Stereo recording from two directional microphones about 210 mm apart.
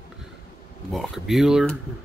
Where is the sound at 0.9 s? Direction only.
Centre (ahead or behind).